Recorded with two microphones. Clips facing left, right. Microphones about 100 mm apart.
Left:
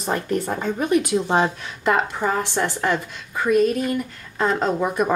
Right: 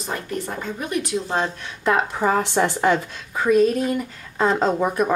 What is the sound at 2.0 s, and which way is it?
A woman's voice, 5° right (ahead or behind).